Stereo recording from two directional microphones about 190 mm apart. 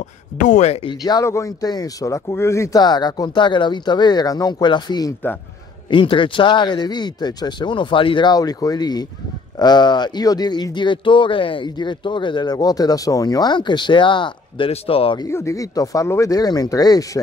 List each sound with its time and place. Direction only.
0.4 s speech: 40° left (ahead or behind)
1.0 s speech: 20° left (ahead or behind)
15.2 s speech: 15° left (ahead or behind)